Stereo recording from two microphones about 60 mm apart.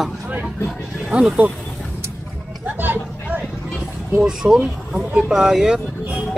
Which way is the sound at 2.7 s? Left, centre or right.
Right.